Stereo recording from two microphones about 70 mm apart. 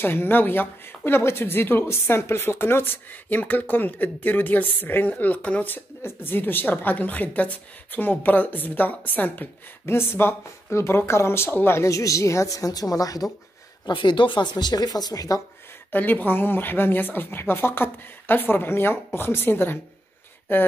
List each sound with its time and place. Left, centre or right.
0.0 s speech: left
9.8 s speech: left
13.8 s speech: left
15.9 s speech: left